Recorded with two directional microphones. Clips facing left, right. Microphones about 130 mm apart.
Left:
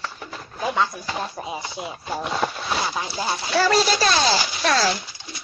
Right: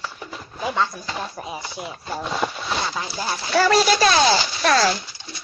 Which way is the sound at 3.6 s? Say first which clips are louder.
Right 3 dB; 60° right (ahead or behind).